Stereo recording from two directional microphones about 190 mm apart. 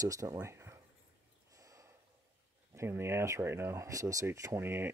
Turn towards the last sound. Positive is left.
turn(degrees=-10)  # may be behind; listen again after turning